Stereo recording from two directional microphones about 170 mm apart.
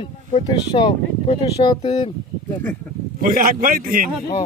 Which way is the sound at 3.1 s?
55° right (ahead or behind).